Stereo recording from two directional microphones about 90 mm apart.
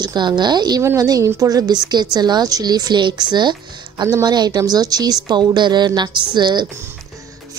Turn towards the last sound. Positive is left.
turn(degrees=-55)  # may be behind; listen again after turning